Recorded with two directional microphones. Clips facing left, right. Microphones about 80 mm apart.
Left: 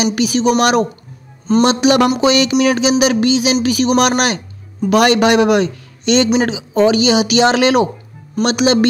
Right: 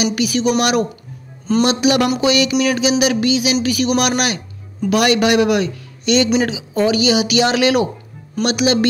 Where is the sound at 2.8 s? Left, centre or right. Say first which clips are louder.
Left 3 dB; left.